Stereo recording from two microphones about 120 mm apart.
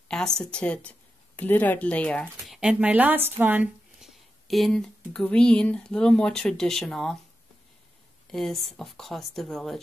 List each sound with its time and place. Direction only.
0.1 s a woman's voice: 5° left (ahead or behind)
2.4 s speech: 5° right (ahead or behind)
4.0 s speech: centre (ahead or behind)
8.3 s speech: 5° left (ahead or behind)